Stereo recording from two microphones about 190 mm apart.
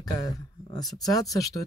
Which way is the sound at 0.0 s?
20° left (ahead or behind).